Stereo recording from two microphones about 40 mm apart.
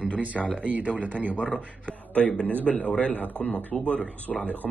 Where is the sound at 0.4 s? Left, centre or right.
Left.